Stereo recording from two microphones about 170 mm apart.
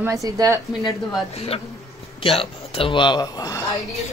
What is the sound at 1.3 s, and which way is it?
A man's voice, 35° left (ahead or behind).